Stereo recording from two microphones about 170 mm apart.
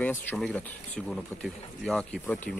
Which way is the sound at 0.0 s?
10° left (ahead or behind).